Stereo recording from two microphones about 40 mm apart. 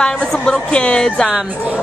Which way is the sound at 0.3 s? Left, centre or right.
Centre.